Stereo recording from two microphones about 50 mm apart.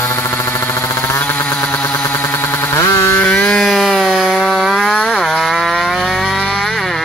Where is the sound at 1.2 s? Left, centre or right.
Left.